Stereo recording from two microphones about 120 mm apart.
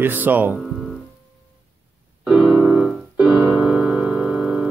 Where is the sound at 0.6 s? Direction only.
Centre (ahead or behind).